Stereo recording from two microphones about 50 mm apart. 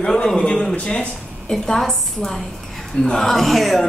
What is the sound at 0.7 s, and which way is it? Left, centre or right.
Speech, left.